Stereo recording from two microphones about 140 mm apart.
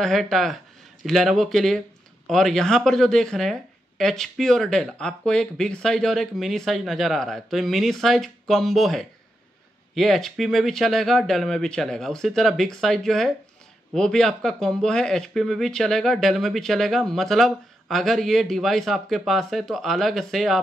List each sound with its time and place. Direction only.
0.0 s speech: centre (ahead or behind)